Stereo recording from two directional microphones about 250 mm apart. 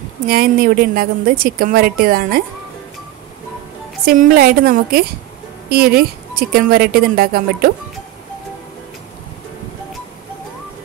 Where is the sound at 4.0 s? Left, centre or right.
Right.